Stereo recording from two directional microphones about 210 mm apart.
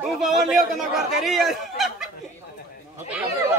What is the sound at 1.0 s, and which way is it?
Speech, centre (ahead or behind).